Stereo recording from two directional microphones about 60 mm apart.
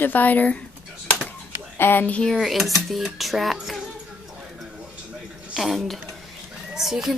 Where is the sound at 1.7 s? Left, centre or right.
Left.